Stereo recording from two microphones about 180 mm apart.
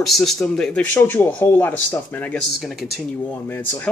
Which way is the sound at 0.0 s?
Centre (ahead or behind).